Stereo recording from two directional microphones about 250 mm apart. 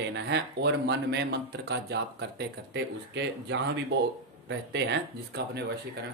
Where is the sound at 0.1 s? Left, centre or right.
Right.